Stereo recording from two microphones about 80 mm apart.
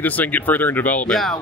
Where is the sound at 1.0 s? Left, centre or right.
Centre.